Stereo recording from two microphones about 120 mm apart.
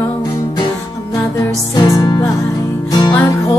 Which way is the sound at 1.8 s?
35° left (ahead or behind).